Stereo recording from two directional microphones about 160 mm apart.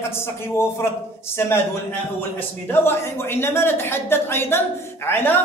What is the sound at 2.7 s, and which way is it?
Speech, 15° left (ahead or behind).